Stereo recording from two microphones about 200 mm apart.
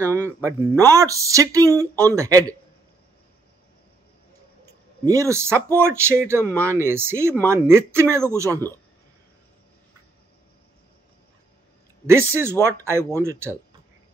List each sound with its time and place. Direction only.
0.0 s speech: 15° right (ahead or behind)
5.0 s speech: 15° right (ahead or behind)
12.1 s speech: 10° right (ahead or behind)